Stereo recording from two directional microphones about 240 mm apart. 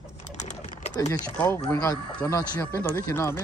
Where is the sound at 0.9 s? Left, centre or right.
Centre.